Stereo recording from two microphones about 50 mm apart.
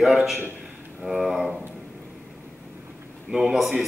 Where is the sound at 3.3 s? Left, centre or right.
Centre.